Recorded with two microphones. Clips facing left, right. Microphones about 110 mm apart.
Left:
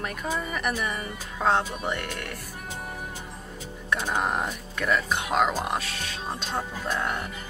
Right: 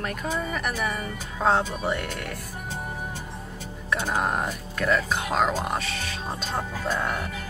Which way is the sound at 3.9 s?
Centre (ahead or behind).